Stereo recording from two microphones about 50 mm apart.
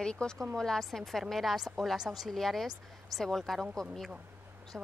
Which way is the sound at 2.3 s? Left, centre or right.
Centre.